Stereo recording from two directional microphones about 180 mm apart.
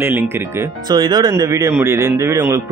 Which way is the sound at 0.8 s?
25° right (ahead or behind).